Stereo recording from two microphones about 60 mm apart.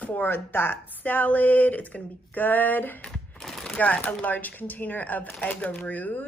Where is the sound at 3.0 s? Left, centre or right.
Centre.